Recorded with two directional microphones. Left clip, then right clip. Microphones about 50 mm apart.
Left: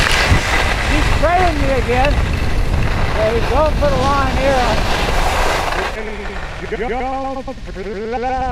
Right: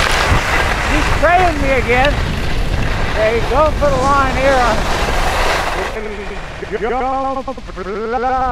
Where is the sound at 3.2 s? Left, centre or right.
Right.